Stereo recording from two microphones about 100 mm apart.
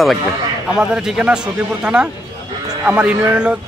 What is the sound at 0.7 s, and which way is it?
Speech, 5° right (ahead or behind).